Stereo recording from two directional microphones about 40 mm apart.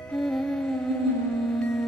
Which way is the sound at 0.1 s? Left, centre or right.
Centre.